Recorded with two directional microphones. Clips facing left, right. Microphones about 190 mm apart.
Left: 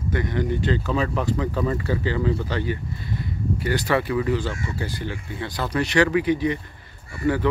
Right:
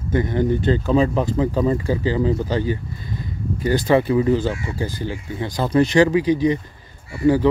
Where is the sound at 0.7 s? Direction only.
35° right (ahead or behind).